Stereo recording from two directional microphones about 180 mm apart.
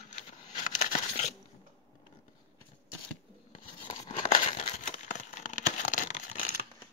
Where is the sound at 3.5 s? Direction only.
40° left (ahead or behind).